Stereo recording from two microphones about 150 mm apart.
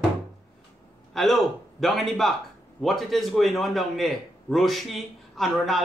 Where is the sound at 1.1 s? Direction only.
Centre (ahead or behind).